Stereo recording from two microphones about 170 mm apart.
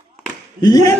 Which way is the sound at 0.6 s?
20° left (ahead or behind).